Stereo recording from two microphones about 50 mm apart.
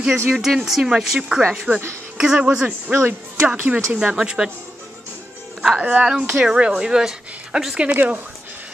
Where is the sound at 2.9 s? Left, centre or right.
Right.